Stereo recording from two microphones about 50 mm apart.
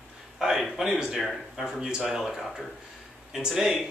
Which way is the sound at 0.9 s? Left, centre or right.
Centre.